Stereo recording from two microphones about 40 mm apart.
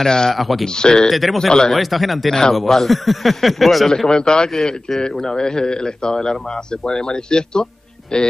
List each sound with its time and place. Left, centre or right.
0.0 s speech: centre
0.3 s a man's voice: centre
0.7 s a man's voice: centre
1.0 s a man's voice: centre
4.1 s a man's voice: centre